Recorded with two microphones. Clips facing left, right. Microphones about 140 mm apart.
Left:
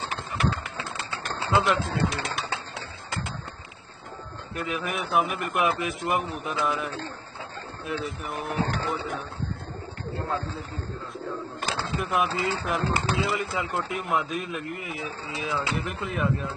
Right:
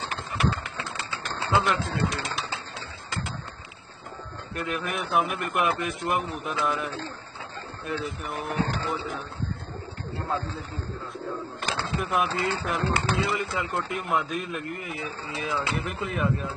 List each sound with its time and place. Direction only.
1.2 s speech: centre (ahead or behind)
4.6 s speech: centre (ahead or behind)
11.1 s speech: centre (ahead or behind)